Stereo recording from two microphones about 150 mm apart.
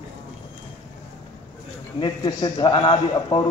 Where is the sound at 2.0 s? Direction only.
30° left (ahead or behind).